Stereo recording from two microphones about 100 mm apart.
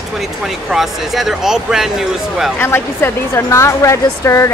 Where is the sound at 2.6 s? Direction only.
20° left (ahead or behind).